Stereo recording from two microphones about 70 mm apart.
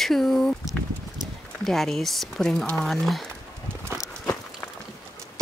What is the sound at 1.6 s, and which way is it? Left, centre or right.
Speech, centre.